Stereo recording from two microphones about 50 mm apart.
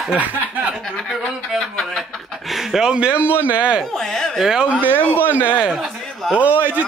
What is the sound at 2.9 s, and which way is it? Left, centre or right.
Speech, right.